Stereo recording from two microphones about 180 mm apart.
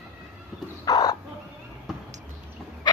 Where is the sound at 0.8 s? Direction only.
20° left (ahead or behind).